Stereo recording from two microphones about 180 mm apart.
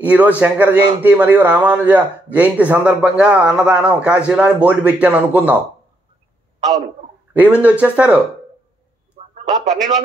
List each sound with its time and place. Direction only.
0.0 s a man's voice: 10° right (ahead or behind)
7.6 s a man's voice: 5° right (ahead or behind)
9.3 s a man's voice: 40° right (ahead or behind)